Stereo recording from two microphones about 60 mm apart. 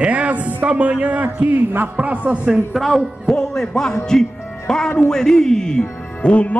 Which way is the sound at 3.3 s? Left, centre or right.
Centre.